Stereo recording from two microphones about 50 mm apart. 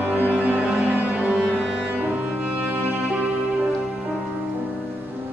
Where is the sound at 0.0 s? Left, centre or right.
Right.